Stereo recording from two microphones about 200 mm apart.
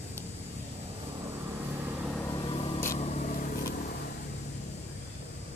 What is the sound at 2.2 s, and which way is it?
Vehicle, 25° left (ahead or behind).